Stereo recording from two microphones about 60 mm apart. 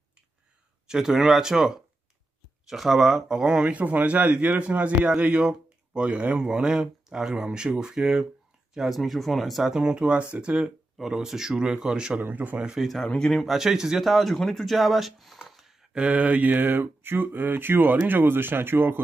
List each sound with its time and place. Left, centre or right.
0.8 s speech: centre
9.8 s speech: centre
12.2 s a sound: right
12.8 s speech: centre
13.5 s speech: centre
15.9 s a sound: right